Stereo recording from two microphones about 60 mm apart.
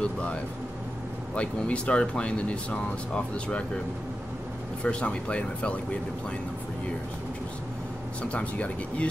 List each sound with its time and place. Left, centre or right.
0.0 s speech: centre
4.8 s speech: centre
8.2 s speech: left